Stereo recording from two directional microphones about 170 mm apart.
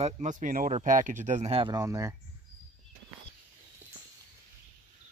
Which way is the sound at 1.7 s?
20° right (ahead or behind).